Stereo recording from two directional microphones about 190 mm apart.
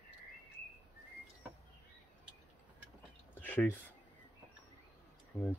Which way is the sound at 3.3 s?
10° left (ahead or behind).